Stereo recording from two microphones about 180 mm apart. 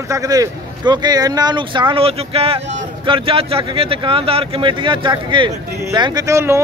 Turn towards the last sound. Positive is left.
turn(degrees=-15)  # may be behind; listen again after turning